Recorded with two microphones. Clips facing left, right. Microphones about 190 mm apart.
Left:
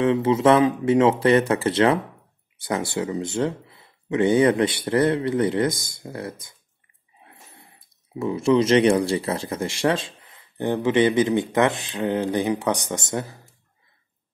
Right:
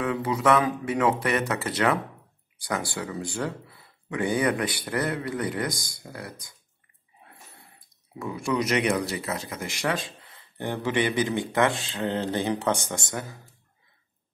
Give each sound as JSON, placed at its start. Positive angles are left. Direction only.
{"t": 0.0, "sound": "speech", "side_deg": 25}
{"t": 8.2, "sound": "speech", "side_deg": 25}